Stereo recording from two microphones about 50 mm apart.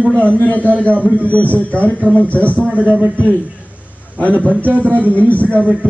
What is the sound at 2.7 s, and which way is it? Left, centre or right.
Speech, right.